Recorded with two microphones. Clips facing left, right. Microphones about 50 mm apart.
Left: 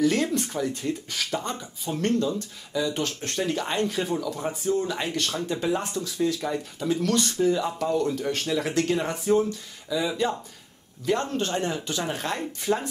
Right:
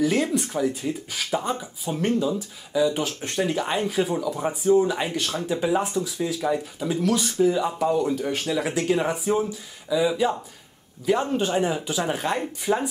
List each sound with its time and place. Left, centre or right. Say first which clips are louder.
0.0 s speech: right 1 dB; centre